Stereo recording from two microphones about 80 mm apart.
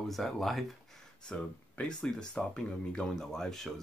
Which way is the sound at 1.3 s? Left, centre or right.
Centre.